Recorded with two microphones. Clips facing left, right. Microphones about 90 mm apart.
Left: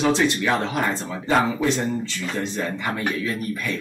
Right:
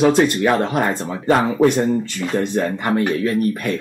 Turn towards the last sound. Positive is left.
turn(degrees=-55)  # may be behind; listen again after turning